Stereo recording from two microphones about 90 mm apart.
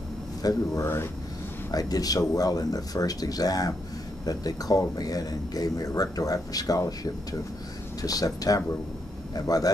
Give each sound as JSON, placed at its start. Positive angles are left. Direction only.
{"t": 0.4, "sound": "speech", "side_deg": 45}
{"t": 0.8, "sound": "speech", "side_deg": 25}
{"t": 1.7, "sound": "speech", "side_deg": 45}
{"t": 8.0, "sound": "speech", "side_deg": 45}